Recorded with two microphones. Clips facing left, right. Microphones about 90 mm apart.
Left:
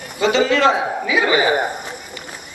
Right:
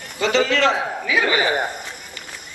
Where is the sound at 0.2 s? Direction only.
20° left (ahead or behind).